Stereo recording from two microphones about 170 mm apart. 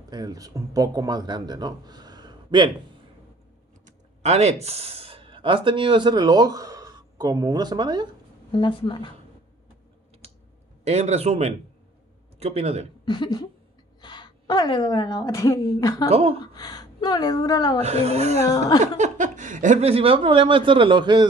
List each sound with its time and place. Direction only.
0.1 s speech: 25° right (ahead or behind)
3.8 s speech: 40° right (ahead or behind)
8.5 s speech: 30° left (ahead or behind)
10.8 s a man's voice: 40° right (ahead or behind)
13.0 s a sound: 25° left (ahead or behind)
14.0 s a woman's voice: 25° left (ahead or behind)
16.1 s a man's voice: 35° right (ahead or behind)
16.3 s a woman's voice: 25° left (ahead or behind)
17.8 s a man's voice: 40° right (ahead or behind)